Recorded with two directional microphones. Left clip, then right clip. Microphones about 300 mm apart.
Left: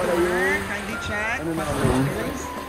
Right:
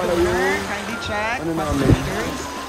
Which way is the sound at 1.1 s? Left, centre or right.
Right.